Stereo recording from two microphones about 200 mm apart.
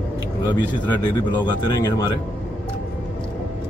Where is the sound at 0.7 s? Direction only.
20° left (ahead or behind).